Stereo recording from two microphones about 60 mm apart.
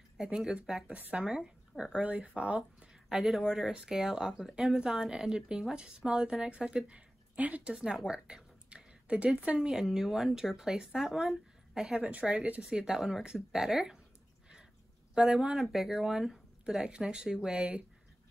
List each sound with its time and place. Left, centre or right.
0.2 s speech: centre
2.0 s speech: right
7.7 s speech: centre
12.0 s speech: right
15.2 s speech: centre
15.5 s speech: centre